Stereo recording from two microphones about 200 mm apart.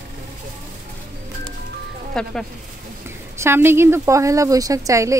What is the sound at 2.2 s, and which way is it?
Speech, 5° left (ahead or behind).